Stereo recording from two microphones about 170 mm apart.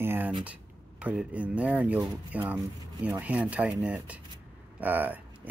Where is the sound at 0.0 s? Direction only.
10° right (ahead or behind).